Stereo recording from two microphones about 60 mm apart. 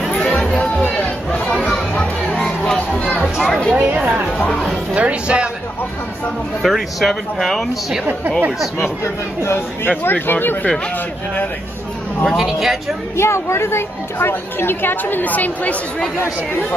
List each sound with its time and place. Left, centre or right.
0.1 s music: centre
0.6 s music: left; by 2.4 s centre
2.4 s a sound: centre
3.7 s a sound: right
4.5 s music: centre
4.9 s music: centre
6.6 s speech: centre
9.0 s speech: left
9.8 s a woman's voice: left
12.3 s speech: centre
13.1 s a woman's voice: left